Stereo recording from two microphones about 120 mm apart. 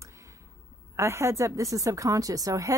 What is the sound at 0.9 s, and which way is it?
Speech, 25° right (ahead or behind).